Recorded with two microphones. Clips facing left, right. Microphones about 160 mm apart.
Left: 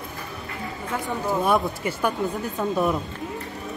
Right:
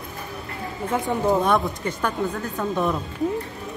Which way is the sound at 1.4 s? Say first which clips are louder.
Even; 5° left (ahead or behind).